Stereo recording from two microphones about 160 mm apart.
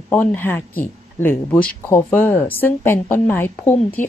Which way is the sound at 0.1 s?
10° left (ahead or behind).